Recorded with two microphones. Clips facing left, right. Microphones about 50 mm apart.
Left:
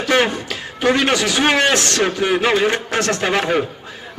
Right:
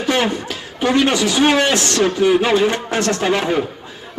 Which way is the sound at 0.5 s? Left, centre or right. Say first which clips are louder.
Left 1 dB; left.